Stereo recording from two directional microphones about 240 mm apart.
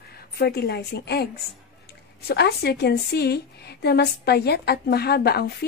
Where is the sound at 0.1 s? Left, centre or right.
Left.